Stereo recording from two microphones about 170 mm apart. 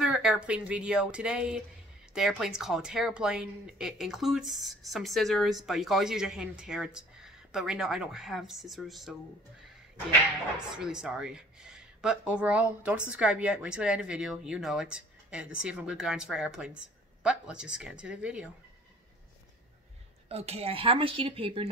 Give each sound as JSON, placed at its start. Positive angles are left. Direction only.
{"t": 0.0, "sound": "speech", "side_deg": -5}
{"t": 10.8, "sound": "speech", "side_deg": -5}
{"t": 20.2, "sound": "speech", "side_deg": -35}